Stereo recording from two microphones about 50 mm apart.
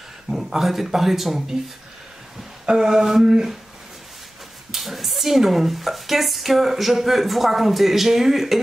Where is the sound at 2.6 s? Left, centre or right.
Centre.